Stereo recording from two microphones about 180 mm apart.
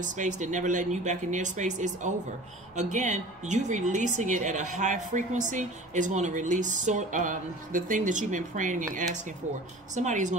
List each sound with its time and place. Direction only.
0.0 s a woman's voice: 45° right (ahead or behind)